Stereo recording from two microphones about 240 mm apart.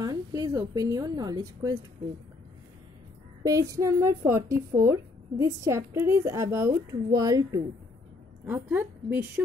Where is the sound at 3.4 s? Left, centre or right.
Centre.